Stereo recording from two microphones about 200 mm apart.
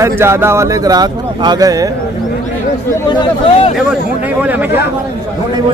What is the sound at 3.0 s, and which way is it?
Speech, 20° left (ahead or behind).